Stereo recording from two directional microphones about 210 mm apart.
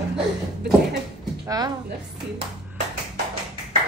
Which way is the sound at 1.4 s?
15° right (ahead or behind).